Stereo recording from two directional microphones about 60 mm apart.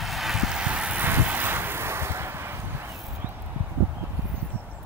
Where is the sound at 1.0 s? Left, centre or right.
Right.